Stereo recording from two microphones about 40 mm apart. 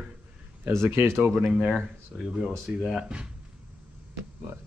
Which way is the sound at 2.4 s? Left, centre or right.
Centre.